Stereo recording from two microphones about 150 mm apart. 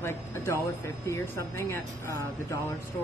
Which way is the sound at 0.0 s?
15° left (ahead or behind).